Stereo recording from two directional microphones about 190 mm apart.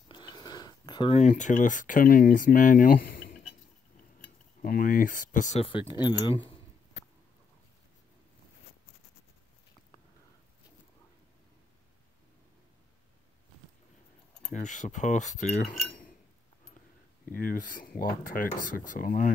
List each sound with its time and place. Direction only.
0.1 s a sound: 20° left (ahead or behind)
1.2 s speech: 40° left (ahead or behind)
4.6 s speech: 50° left (ahead or behind)
5.7 s speech: 25° left (ahead or behind)
14.5 s cutlery: 40° left (ahead or behind)
17.4 s speech: 45° left (ahead or behind)